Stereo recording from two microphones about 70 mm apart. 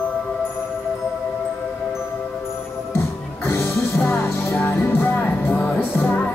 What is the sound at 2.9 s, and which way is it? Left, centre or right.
Music, left.